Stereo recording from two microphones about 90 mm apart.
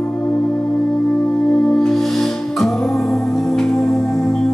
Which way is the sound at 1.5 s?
5° left (ahead or behind).